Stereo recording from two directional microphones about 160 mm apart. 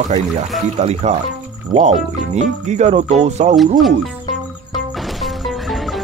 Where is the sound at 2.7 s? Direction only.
45° right (ahead or behind).